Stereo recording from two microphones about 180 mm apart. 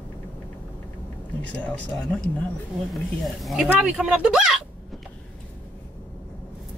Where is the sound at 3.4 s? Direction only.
5° right (ahead or behind).